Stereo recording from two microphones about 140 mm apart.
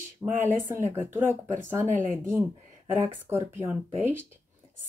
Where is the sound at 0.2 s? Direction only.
15° right (ahead or behind).